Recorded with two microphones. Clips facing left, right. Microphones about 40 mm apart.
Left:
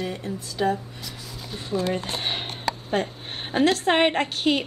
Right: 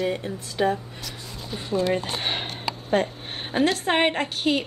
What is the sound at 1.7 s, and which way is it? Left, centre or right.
Speech, right.